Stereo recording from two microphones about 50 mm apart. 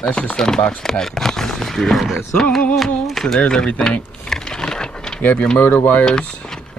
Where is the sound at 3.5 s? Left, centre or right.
Centre.